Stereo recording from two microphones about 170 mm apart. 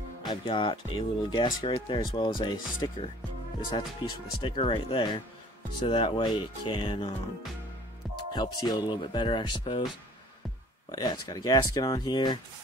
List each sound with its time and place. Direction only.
0.3 s speech: 30° left (ahead or behind)
8.3 s speech: 25° left (ahead or behind)
10.9 s speech: 25° left (ahead or behind)